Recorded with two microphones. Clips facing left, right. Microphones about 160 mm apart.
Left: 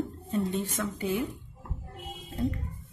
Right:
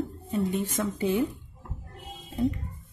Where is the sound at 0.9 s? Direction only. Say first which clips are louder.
Right 4 dB; 25° right (ahead or behind).